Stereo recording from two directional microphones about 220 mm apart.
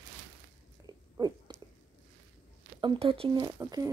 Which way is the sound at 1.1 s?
15° right (ahead or behind).